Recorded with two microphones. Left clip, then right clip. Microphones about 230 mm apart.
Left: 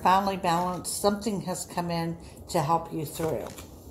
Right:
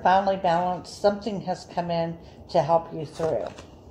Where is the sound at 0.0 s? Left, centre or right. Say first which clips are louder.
Right 3 dB; left.